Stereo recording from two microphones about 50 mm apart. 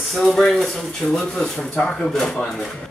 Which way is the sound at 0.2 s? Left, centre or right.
Centre.